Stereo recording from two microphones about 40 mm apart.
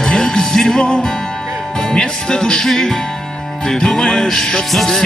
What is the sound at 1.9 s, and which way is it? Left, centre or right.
Speech, centre.